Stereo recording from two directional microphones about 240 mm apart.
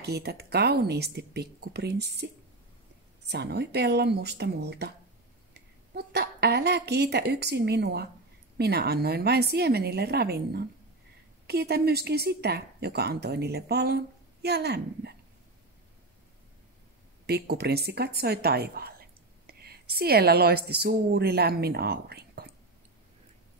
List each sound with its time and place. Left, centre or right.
0.0 s speech: right
5.5 s a sound: right
8.5 s speech: right
17.3 s a woman's voice: right